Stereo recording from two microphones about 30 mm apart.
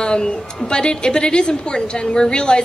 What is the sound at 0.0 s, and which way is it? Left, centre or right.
A woman's voice, left.